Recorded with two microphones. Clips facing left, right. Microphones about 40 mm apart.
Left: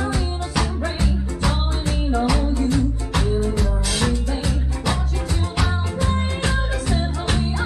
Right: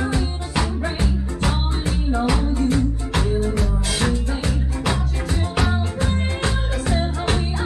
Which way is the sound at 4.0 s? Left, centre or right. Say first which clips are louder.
Even; right.